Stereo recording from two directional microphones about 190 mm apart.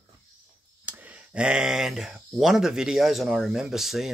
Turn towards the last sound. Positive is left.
turn(degrees=0)  # may be behind; listen again after turning